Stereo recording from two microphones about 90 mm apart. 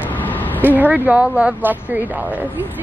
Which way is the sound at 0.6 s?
20° right (ahead or behind).